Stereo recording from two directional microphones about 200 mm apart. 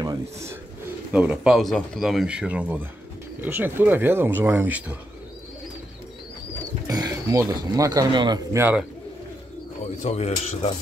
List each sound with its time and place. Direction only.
0.0 s speech: 15° right (ahead or behind)
6.9 s speech: 20° right (ahead or behind)
8.5 s speech: 10° right (ahead or behind)
10.0 s a man's voice: 35° left (ahead or behind)